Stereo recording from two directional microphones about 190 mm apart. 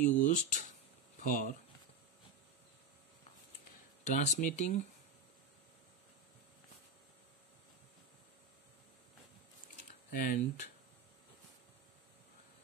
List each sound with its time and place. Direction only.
0.0 s speech: 40° left (ahead or behind)
4.0 s speech: 40° left (ahead or behind)
10.1 s speech: 45° left (ahead or behind)